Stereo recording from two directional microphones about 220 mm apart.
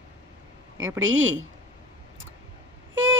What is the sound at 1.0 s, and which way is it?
Speech, 60° right (ahead or behind).